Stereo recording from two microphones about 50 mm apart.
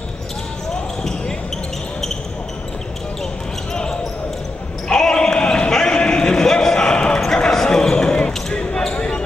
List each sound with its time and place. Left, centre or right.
3.7 s basketball bounce: centre